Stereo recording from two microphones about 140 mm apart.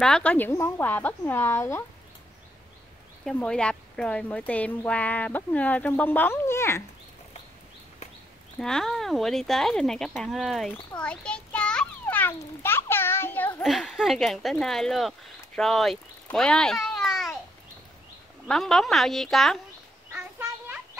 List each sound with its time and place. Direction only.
0.0 s a woman's voice: 5° left (ahead or behind)
3.3 s a woman's voice: 5° left (ahead or behind)
8.5 s speech: 5° left (ahead or behind)
10.9 s children playing: 10° left (ahead or behind)
13.6 s speech: centre (ahead or behind)
18.5 s speech: centre (ahead or behind)
20.1 s a sound: 15° right (ahead or behind)